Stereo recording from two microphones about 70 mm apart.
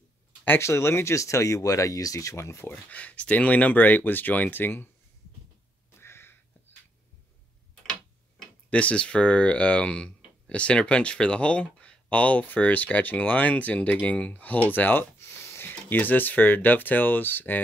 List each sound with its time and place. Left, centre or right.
0.5 s speech: left
2.9 s speech: centre
5.9 s a sound: left
8.6 s speech: centre